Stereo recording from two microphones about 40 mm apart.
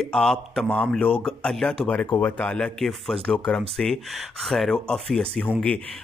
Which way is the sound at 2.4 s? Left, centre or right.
Left.